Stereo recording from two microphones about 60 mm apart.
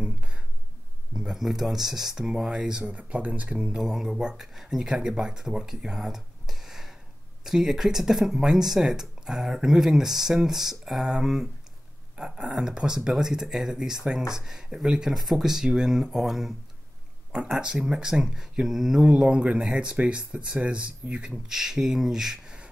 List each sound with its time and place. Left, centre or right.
0.0 s a sound: centre
1.1 s speech: centre
2.8 s speech: right; by 16.5 s centre
17.3 s speech: centre
19.0 s speech: centre